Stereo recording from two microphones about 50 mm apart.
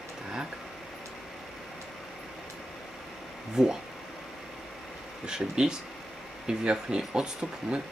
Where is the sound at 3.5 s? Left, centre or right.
Centre.